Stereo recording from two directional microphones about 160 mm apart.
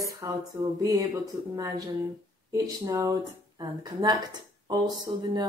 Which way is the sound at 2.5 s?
20° right (ahead or behind).